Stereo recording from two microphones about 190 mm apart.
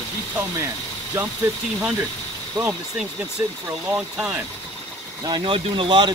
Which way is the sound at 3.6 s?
20° right (ahead or behind).